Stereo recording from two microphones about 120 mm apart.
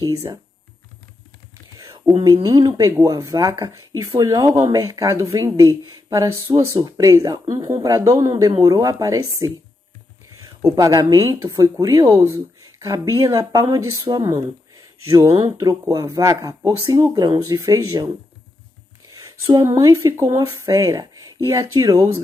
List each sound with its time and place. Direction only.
1.8 s speech: 30° right (ahead or behind)